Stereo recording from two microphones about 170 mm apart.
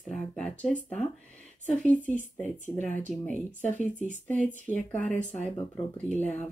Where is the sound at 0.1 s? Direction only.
5° left (ahead or behind).